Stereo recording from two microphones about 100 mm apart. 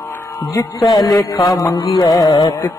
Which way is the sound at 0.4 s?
35° left (ahead or behind).